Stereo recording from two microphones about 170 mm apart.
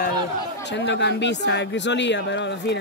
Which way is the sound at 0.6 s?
90° left.